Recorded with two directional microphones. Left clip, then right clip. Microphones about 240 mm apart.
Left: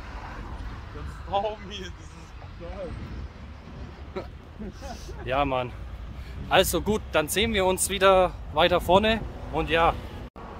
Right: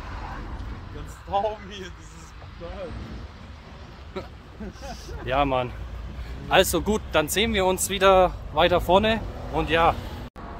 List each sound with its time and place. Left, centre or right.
1.3 s speech: centre
4.2 s speech: centre